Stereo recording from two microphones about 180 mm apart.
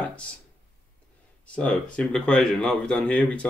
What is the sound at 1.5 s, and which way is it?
Speech, 5° left (ahead or behind).